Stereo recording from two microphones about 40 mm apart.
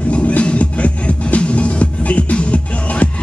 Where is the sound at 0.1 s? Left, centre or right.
Left.